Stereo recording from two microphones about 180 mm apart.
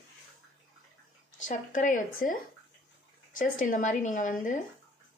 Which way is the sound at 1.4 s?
45° left (ahead or behind).